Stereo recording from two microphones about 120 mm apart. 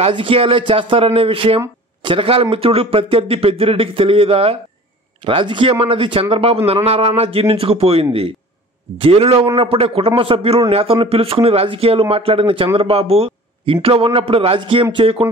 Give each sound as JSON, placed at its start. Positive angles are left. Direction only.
{"t": 0.1, "sound": "a man's voice", "side_deg": -50}